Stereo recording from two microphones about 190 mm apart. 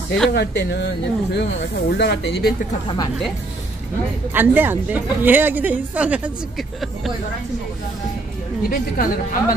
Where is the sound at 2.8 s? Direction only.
20° left (ahead or behind).